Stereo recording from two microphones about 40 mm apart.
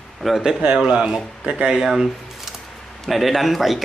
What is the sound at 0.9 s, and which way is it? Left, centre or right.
A man's voice, centre.